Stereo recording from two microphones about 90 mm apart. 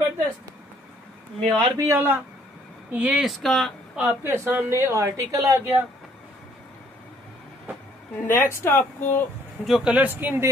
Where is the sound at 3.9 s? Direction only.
25° right (ahead or behind).